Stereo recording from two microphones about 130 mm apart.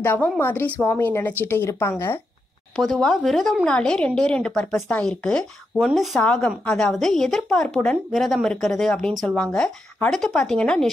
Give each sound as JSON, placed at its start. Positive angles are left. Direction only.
{"t": 0.0, "sound": "a woman's voice", "side_deg": 15}
{"t": 2.7, "sound": "a woman's voice", "side_deg": 0}